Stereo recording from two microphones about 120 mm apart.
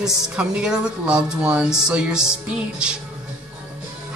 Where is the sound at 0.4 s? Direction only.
5° right (ahead or behind).